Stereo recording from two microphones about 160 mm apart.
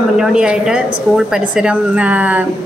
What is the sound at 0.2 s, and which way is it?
A woman's voice, 5° right (ahead or behind).